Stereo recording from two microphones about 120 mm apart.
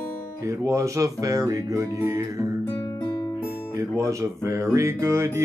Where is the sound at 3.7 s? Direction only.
25° right (ahead or behind).